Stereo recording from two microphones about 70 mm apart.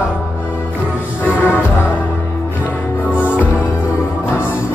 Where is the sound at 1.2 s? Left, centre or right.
Left.